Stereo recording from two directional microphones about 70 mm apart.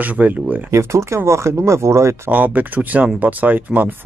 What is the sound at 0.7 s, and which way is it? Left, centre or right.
Speech, right.